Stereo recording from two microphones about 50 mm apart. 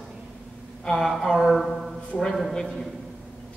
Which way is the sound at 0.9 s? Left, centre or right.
Centre.